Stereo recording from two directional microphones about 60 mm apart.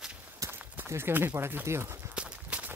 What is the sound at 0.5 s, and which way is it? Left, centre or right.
Speech, right.